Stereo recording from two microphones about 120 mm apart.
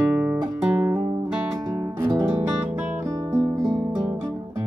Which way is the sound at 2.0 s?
25° right (ahead or behind).